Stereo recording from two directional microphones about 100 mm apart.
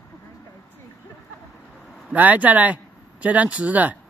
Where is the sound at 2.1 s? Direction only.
15° right (ahead or behind).